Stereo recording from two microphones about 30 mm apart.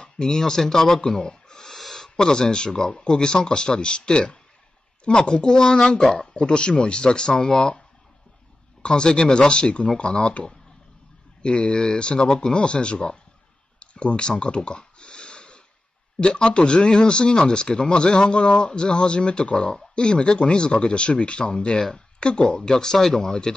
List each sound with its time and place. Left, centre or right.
0.2 s speech: centre
1.2 s snort: left
1.8 s a sound: centre
2.0 s speech: left
6.1 s speech: left
8.8 s speech: left
11.4 s speech: left
13.7 s a sound: left
16.2 s speech: left
22.7 s speech: centre